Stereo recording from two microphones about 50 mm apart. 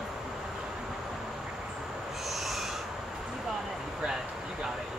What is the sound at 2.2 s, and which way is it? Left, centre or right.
Owl, centre.